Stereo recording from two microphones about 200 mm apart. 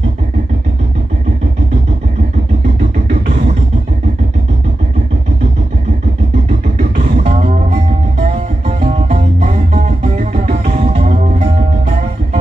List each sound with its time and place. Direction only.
6.8 s music: 35° right (ahead or behind)